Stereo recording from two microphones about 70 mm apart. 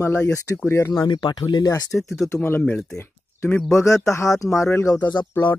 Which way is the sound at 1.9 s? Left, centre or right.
Centre.